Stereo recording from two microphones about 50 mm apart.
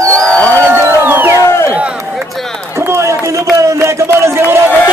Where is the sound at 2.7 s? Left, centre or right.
Right.